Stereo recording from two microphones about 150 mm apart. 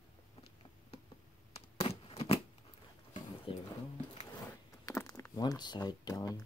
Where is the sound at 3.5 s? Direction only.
35° left (ahead or behind).